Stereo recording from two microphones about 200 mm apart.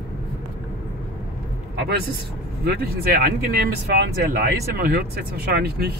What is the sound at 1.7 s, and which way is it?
Speech, 55° right (ahead or behind).